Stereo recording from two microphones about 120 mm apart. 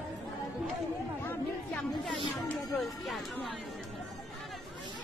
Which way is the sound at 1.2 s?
10° left (ahead or behind).